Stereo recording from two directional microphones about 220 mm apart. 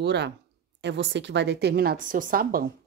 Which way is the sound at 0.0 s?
50° right (ahead or behind).